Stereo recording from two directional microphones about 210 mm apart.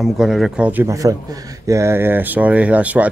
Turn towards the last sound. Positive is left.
turn(degrees=-5)  # may be behind; listen again after turning